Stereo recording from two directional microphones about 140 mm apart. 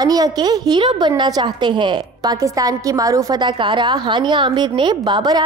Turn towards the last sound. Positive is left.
turn(degrees=-30)  # may be behind; listen again after turning